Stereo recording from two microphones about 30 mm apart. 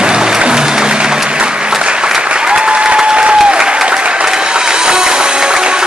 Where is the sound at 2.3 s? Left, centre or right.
Right.